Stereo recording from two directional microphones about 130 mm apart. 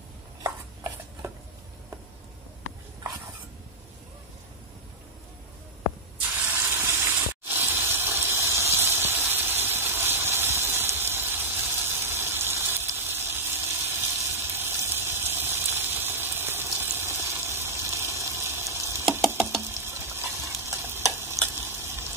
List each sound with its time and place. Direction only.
6.6 s water: 15° right (ahead or behind)
19.0 s a sound: 20° right (ahead or behind)
19.6 s frying: 20° right (ahead or behind)